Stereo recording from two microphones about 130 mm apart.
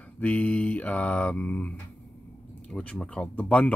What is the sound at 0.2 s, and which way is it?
Speech, 10° left (ahead or behind).